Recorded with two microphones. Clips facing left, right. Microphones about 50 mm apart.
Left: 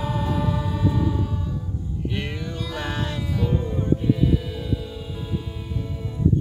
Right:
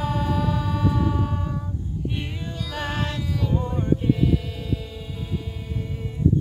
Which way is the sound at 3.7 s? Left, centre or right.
Right.